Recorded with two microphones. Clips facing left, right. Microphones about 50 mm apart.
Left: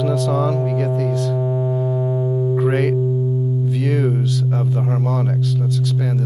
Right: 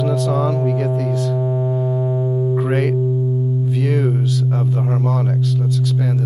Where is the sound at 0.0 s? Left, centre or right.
Centre.